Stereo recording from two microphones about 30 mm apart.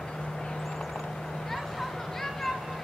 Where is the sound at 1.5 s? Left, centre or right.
Centre.